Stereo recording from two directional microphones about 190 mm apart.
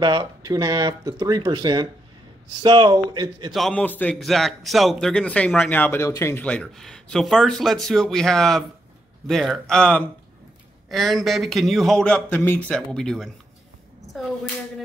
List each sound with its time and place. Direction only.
0.0 s speech: 20° right (ahead or behind)
3.5 s a man's voice: 5° left (ahead or behind)